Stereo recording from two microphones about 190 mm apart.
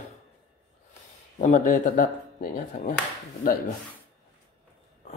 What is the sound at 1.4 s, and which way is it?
Speech, 40° left (ahead or behind).